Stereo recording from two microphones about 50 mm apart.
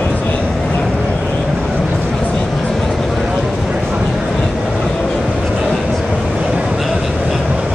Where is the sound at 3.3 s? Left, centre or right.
Centre.